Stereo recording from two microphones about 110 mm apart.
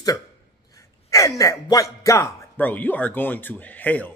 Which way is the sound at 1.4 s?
30° left (ahead or behind).